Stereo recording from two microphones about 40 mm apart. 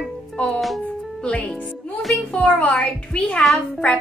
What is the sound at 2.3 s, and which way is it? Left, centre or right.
Music, left.